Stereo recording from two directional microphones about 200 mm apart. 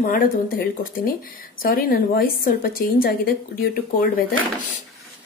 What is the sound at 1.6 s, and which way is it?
A woman's voice, 45° left (ahead or behind).